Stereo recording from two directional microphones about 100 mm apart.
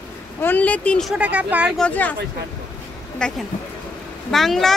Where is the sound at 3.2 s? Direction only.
10° left (ahead or behind).